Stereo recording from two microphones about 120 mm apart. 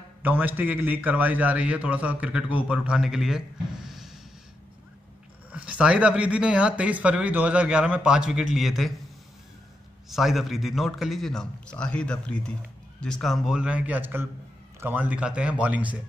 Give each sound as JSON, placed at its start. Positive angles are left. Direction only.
{"t": 0.2, "sound": "a man's voice", "side_deg": -15}
{"t": 5.5, "sound": "a man's voice", "side_deg": -10}
{"t": 10.0, "sound": "a man's voice", "side_deg": 0}